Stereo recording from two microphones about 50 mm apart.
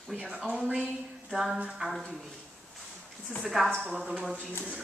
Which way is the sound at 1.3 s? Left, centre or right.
Centre.